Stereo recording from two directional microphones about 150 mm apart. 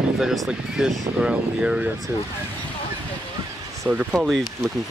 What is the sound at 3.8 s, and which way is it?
Speech, 5° right (ahead or behind).